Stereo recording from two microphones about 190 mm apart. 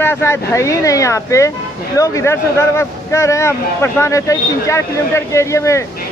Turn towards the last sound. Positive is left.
turn(degrees=15)  # may be behind; listen again after turning